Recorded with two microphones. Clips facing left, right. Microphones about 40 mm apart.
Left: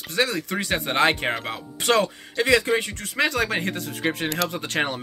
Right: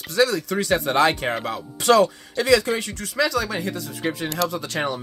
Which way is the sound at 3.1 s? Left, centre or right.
Left.